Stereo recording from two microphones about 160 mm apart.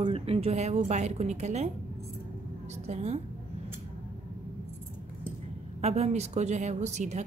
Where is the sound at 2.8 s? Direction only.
45° right (ahead or behind).